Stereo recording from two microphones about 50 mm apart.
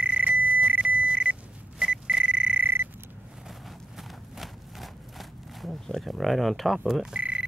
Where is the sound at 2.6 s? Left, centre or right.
Right.